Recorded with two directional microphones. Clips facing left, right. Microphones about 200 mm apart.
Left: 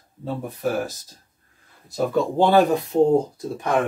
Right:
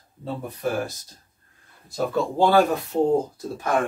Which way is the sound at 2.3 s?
20° left (ahead or behind).